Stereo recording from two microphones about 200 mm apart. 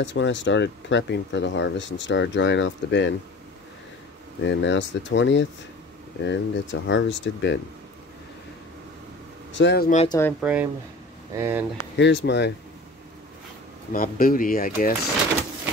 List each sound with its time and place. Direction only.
0.0 s speech: 65° left (ahead or behind)
4.4 s speech: 65° left (ahead or behind)
9.5 s speech: 60° left (ahead or behind)
10.0 s speech: 15° left (ahead or behind)
10.4 s speech: 5° right (ahead or behind)
11.8 s speech: 65° left (ahead or behind)
13.9 s speech: 45° left (ahead or behind)